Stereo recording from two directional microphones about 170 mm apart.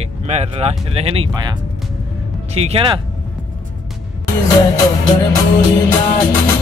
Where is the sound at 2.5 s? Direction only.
35° right (ahead or behind).